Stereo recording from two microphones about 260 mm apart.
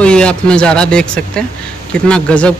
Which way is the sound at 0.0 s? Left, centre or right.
Centre.